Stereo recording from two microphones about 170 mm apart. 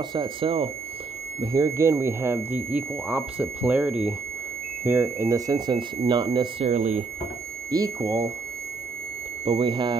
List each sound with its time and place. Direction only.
0.1 s speech: 30° right (ahead or behind)
6.6 s speech: 45° right (ahead or behind)
7.7 s speech: 20° right (ahead or behind)
9.4 s speech: 30° right (ahead or behind)